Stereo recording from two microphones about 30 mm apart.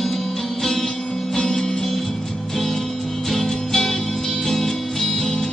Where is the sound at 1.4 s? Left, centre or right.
Left.